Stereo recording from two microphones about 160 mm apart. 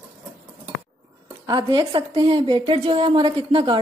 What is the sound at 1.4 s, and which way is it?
A woman's voice, 25° right (ahead or behind).